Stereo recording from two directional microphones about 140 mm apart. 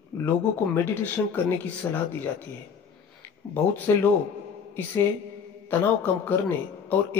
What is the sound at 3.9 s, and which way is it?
Speech, 20° left (ahead or behind).